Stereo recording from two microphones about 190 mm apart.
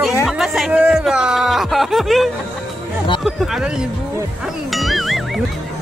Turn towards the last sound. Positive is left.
turn(degrees=0)  # may be behind; listen again after turning